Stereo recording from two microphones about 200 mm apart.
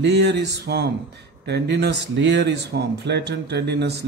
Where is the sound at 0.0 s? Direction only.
55° right (ahead or behind).